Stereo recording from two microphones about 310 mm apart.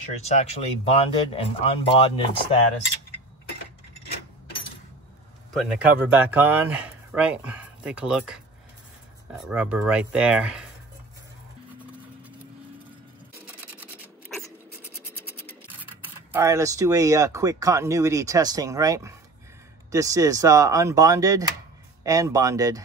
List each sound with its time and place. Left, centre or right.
0.2 s speech: centre
5.6 s speech: centre
13.5 s scratch: centre
16.3 s speech: centre